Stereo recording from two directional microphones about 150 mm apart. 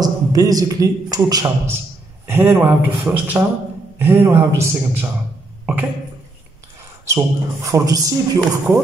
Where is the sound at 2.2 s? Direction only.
15° right (ahead or behind).